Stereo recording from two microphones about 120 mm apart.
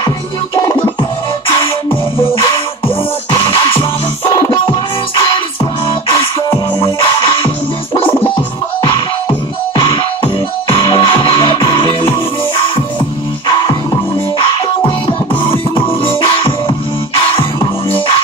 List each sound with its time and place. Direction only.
3.3 s music: 40° left (ahead or behind)
5.9 s music: 45° left (ahead or behind)
9.8 s music: 45° left (ahead or behind)
15.5 s music: 45° left (ahead or behind)